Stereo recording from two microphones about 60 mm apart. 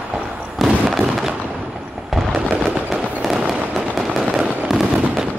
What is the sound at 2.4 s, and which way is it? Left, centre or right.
Fireworks, centre.